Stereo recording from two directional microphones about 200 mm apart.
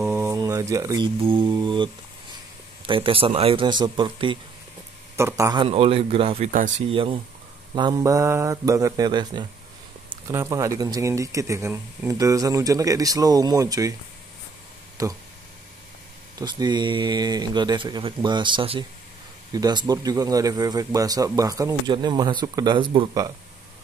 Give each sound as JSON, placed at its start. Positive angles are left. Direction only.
{"t": 0.0, "sound": "speech", "side_deg": -15}
{"t": 2.9, "sound": "speech", "side_deg": -25}
{"t": 5.4, "sound": "speech", "side_deg": -20}
{"t": 15.0, "sound": "speech", "side_deg": -15}
{"t": 16.3, "sound": "speech", "side_deg": -20}